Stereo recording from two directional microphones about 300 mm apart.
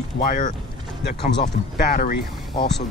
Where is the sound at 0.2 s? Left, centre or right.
Left.